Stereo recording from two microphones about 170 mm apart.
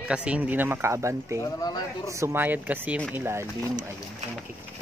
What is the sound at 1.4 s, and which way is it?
Speech, 20° left (ahead or behind).